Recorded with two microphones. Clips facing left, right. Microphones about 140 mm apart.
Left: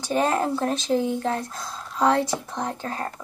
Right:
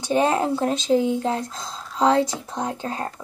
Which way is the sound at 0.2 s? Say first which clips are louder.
Right 1 dB; 15° right (ahead or behind).